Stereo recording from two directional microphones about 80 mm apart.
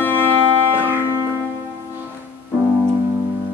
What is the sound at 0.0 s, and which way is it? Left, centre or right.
Music, left.